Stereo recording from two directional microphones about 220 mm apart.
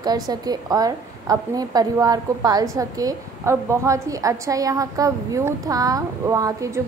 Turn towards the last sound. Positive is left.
turn(degrees=-15)  # may be behind; listen again after turning